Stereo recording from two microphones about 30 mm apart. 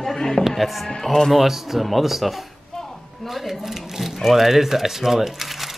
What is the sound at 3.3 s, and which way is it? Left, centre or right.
Sewing machine, centre.